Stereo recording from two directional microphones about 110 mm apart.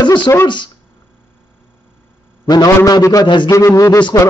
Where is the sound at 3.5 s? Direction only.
30° left (ahead or behind).